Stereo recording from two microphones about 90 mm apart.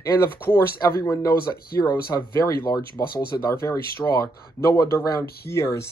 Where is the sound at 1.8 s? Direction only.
50° left (ahead or behind).